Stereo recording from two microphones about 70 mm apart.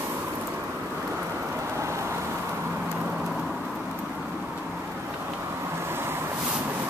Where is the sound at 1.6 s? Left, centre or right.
Right.